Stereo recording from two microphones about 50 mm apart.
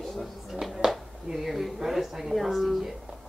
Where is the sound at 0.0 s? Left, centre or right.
Centre.